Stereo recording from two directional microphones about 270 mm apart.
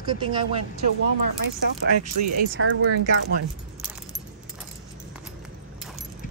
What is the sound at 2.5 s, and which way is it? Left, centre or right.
Speech, right.